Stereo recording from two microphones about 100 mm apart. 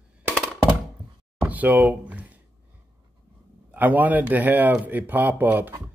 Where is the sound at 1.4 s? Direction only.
15° right (ahead or behind).